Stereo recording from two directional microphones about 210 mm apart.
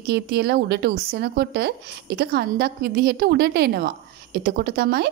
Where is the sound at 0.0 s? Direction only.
50° right (ahead or behind).